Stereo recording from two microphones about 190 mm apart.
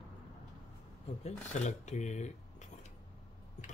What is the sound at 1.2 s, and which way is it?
Cutlery, 40° left (ahead or behind).